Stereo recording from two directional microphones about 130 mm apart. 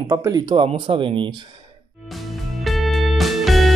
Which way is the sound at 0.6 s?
45° right (ahead or behind).